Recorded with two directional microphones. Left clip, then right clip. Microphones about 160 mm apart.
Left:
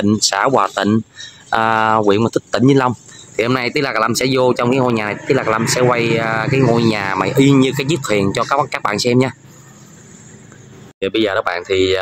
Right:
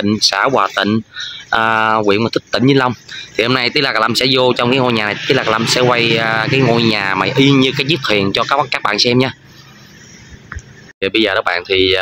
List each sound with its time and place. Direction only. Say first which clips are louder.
0.0 s speech: right 2 dB; 15° left (ahead or behind)
11.0 s speech: right 2 dB; centre (ahead or behind)